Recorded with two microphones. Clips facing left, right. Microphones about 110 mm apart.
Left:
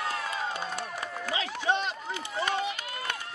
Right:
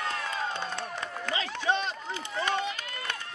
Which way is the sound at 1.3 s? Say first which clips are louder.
Even; 15° left (ahead or behind).